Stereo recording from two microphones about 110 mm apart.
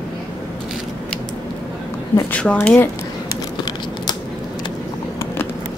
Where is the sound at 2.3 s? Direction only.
10° left (ahead or behind).